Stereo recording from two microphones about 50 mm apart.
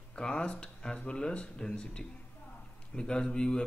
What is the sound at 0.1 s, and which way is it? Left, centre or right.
A man's voice, centre.